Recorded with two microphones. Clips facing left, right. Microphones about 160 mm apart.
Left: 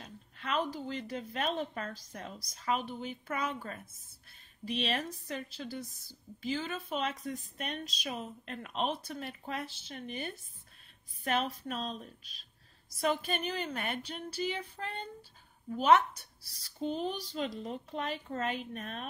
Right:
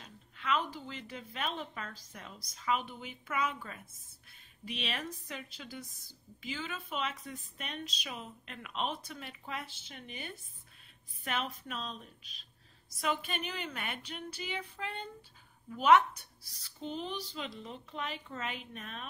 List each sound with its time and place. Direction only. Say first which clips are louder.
0.0 s a woman's voice: right 1 dB; 40° left (ahead or behind)